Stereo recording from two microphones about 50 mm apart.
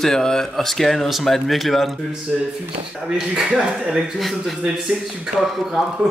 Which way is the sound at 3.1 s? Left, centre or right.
Centre.